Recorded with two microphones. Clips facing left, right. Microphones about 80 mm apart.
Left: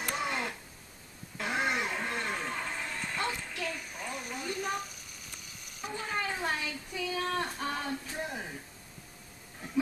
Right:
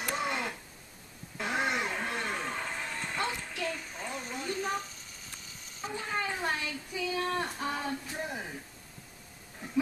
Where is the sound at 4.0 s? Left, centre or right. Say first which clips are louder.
Right 1 dB; centre.